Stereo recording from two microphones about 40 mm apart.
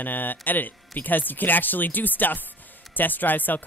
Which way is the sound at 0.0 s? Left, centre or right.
Left.